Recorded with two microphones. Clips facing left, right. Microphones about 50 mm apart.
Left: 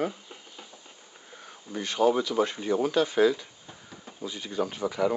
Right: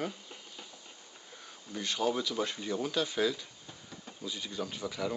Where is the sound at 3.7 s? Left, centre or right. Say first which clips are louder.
Left 3 dB; centre.